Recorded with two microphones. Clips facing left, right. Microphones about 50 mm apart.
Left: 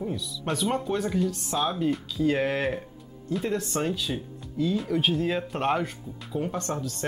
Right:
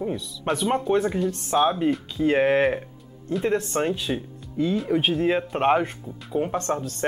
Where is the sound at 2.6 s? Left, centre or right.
Centre.